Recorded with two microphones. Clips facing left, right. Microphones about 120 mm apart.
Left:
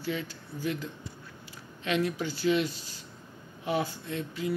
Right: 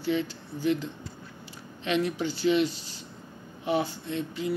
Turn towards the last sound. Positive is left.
turn(degrees=-20)  # may be behind; listen again after turning